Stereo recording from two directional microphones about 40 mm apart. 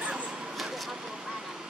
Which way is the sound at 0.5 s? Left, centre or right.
Centre.